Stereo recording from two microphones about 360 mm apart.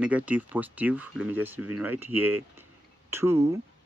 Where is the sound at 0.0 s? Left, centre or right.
Centre.